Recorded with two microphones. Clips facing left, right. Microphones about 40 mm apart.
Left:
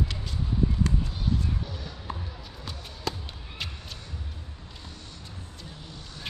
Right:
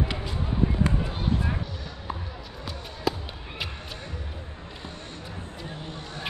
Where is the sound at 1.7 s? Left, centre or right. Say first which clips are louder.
Right 2 dB; centre.